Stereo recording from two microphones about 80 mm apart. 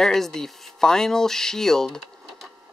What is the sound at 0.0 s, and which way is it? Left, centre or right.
Speech, centre.